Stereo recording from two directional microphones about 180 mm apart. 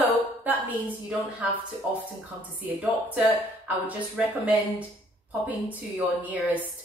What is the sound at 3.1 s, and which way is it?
Speech, 10° right (ahead or behind).